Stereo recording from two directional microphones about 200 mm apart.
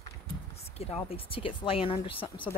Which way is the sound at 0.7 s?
30° left (ahead or behind).